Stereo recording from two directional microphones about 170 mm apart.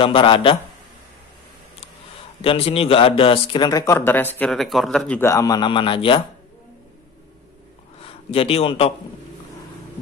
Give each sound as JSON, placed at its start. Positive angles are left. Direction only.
{"t": 0.0, "sound": "a man's voice", "side_deg": 30}
{"t": 2.4, "sound": "a man's voice", "side_deg": 35}
{"t": 4.5, "sound": "speech", "side_deg": 0}
{"t": 5.3, "sound": "a man's voice", "side_deg": 20}
{"t": 8.0, "sound": "a man's voice", "side_deg": 35}